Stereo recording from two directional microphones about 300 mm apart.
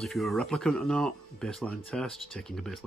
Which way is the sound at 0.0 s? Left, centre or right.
Centre.